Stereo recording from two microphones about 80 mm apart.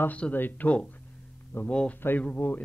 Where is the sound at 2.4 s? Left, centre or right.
Left.